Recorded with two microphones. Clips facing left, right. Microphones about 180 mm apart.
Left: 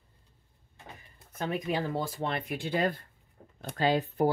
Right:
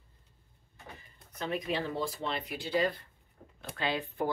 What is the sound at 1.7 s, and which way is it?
Speech, 50° left (ahead or behind).